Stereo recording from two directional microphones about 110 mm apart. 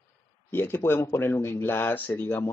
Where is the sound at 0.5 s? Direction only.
20° left (ahead or behind).